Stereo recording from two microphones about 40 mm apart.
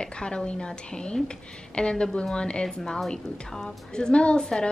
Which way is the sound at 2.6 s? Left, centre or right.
Centre.